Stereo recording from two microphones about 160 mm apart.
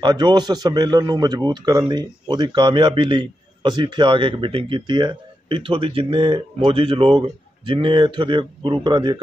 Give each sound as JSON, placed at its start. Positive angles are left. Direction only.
{"t": 0.0, "sound": "a man's voice", "side_deg": -25}